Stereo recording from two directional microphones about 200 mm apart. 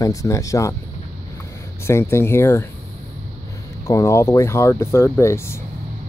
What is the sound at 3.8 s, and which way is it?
Speech, 15° left (ahead or behind).